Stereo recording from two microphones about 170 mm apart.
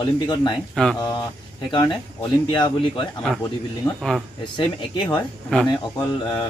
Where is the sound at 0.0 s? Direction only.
25° left (ahead or behind).